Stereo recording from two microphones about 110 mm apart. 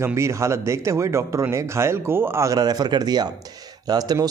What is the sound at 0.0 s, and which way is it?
A man's voice, 25° right (ahead or behind).